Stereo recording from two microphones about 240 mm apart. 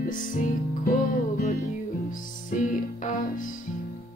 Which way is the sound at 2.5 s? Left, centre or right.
Left.